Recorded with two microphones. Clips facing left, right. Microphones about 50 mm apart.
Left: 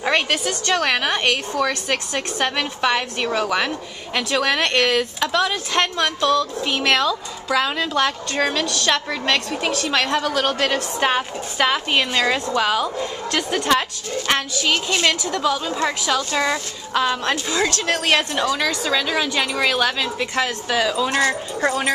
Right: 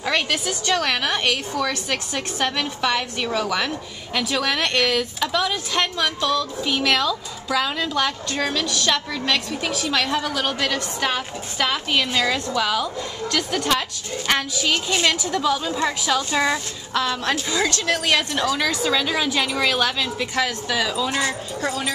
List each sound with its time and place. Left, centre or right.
0.0 s a sound: centre
0.5 s a woman's voice: centre
10.6 s a woman's voice: centre
16.2 s a woman's voice: centre
16.9 s a woman's voice: centre
21.3 s speech: left